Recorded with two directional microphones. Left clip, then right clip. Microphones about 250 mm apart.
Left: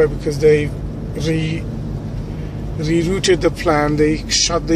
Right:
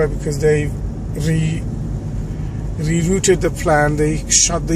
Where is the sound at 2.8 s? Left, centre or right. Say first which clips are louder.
Left 2 dB; centre.